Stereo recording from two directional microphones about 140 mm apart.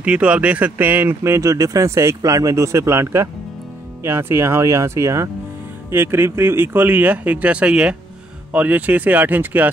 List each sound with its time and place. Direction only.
0.0 s speech: 10° right (ahead or behind)